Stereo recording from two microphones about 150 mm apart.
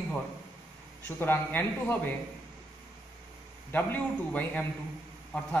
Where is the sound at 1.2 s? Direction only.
15° left (ahead or behind).